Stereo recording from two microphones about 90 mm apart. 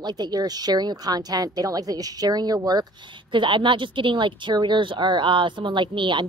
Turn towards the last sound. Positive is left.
turn(degrees=-65)  # may be behind; listen again after turning